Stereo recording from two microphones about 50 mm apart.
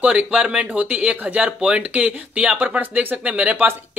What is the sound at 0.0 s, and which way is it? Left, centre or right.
Speech, right.